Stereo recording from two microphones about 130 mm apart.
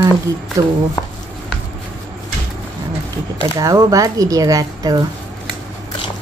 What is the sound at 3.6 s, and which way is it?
Speech, 25° right (ahead or behind).